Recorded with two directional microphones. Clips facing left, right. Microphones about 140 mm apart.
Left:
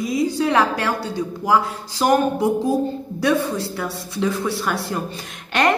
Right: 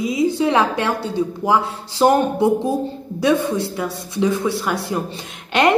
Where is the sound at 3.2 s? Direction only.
20° right (ahead or behind).